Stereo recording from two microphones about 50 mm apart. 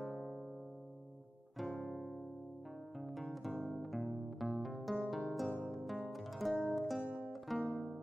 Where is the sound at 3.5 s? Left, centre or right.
Right.